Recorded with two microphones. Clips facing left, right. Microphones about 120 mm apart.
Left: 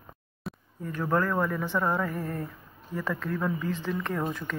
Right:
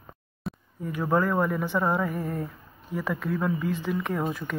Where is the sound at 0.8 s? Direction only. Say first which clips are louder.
Right 2 dB; 10° right (ahead or behind).